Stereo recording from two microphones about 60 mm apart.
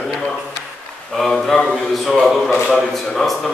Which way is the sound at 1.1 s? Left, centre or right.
Centre.